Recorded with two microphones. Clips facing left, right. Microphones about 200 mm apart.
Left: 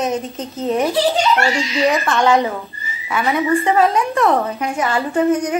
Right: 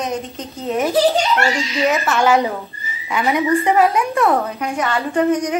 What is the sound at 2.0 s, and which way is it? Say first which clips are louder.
Speech: even; 5° right (ahead or behind).